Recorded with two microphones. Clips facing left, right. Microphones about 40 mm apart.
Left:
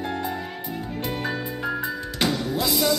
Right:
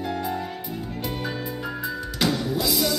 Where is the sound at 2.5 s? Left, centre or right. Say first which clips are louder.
Left 1 dB; centre.